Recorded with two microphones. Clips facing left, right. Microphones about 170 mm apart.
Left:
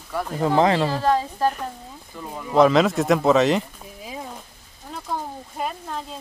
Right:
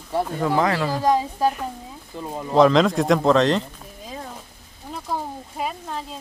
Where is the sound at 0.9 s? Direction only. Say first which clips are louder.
Right 1 dB; 15° right (ahead or behind).